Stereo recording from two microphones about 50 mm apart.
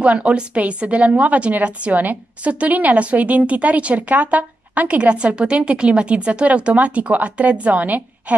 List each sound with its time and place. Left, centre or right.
0.0 s a woman's voice: right